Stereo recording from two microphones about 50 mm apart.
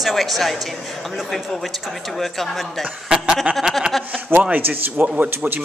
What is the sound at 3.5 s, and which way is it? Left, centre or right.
Speech, right.